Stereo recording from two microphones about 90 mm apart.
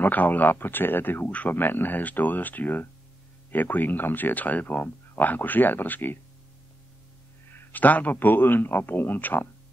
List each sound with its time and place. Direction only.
0.0 s speech: 20° left (ahead or behind)
7.5 s speech: 20° left (ahead or behind)